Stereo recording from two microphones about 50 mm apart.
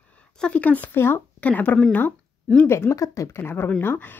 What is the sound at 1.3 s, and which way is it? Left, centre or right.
Speech, left.